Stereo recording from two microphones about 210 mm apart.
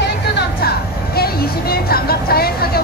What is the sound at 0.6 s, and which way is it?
Speech, 45° left (ahead or behind).